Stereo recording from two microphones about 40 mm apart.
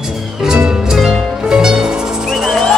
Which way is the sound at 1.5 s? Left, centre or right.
Centre.